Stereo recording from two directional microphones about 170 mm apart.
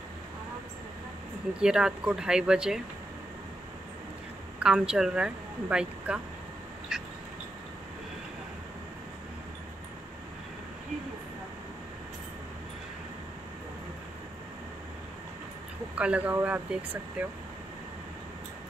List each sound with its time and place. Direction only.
1.6 s speech: 5° right (ahead or behind)
4.6 s speech: 5° right (ahead or behind)
6.9 s a sound: 5° right (ahead or behind)
15.9 s speech: 5° right (ahead or behind)